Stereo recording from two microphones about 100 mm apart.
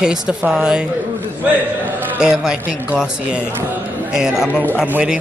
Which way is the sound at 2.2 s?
5° right (ahead or behind).